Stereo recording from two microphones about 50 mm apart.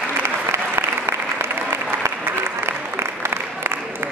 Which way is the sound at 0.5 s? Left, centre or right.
Right.